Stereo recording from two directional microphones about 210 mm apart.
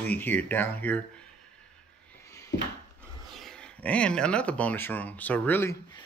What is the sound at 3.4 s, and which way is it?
Speech, 5° left (ahead or behind).